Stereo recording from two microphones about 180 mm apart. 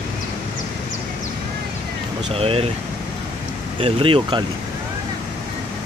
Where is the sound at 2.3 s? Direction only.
30° right (ahead or behind).